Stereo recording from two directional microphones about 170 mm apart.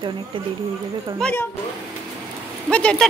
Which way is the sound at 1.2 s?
10° left (ahead or behind).